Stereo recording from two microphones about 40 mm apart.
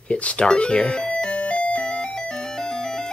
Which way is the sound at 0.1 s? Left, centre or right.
Left.